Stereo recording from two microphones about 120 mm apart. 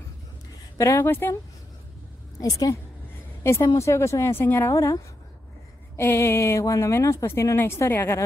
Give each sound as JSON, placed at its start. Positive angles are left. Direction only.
{"t": 0.7, "sound": "speech", "side_deg": 25}
{"t": 2.3, "sound": "speech", "side_deg": 30}